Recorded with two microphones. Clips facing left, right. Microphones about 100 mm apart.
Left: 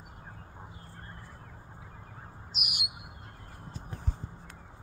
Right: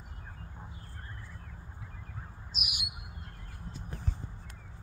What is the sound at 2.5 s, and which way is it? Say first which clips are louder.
Bird: left 2 dB; 60° left (ahead or behind).